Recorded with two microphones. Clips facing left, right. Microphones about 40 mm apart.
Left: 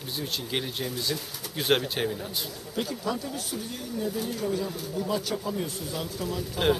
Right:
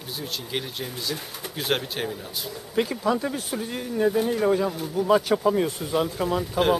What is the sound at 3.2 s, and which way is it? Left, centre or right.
Speech, right.